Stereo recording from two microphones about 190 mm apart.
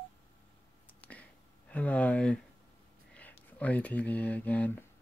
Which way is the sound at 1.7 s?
5° left (ahead or behind).